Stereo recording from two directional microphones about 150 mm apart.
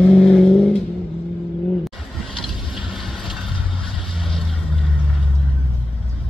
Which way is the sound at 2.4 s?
Centre (ahead or behind).